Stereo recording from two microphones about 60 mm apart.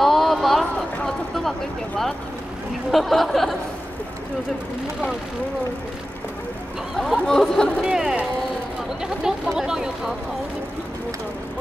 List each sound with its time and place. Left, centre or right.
0.0 s a sound: centre
2.9 s speech: centre
7.0 s speech: centre
7.8 s speech: centre